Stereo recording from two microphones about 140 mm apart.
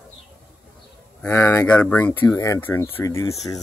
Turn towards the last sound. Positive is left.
turn(degrees=20)  # may be behind; listen again after turning